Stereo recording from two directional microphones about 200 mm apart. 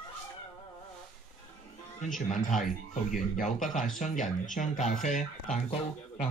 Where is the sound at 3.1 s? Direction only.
40° left (ahead or behind).